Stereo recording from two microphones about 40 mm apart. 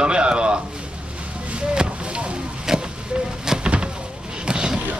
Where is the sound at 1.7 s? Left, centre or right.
Right.